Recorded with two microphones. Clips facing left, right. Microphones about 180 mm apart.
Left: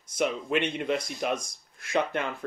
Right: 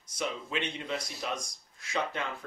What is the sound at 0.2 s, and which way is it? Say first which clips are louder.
Speech: left 7 dB; 60° left (ahead or behind).